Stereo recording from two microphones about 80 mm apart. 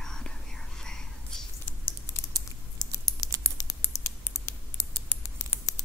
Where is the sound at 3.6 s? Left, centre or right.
Left.